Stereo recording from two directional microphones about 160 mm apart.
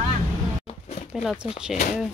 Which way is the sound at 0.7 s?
40° left (ahead or behind).